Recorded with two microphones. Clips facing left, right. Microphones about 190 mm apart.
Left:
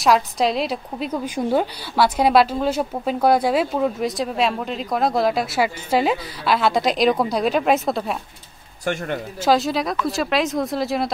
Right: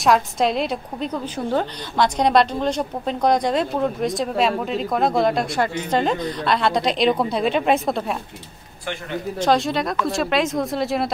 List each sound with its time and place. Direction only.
0.0 s a woman's voice: centre (ahead or behind)
8.9 s a man's voice: 45° left (ahead or behind)
9.4 s a woman's voice: centre (ahead or behind)